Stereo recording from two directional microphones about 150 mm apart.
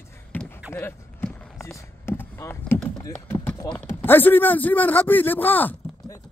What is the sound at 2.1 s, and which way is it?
Rowboat, 15° left (ahead or behind).